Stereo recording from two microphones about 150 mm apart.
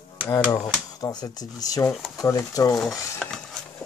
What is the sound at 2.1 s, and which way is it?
Speech, 20° left (ahead or behind).